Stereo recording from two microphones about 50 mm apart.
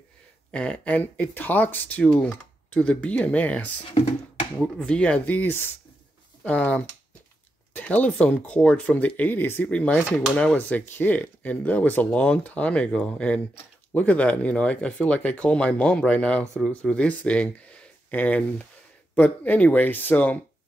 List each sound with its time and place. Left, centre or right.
0.5 s speech: left
4.7 s speech: left
5.2 s speech: left
6.4 s speech: left
10.3 s speech: centre
10.9 s speech: left